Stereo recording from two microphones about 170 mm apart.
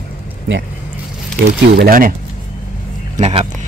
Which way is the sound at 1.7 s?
60° right (ahead or behind).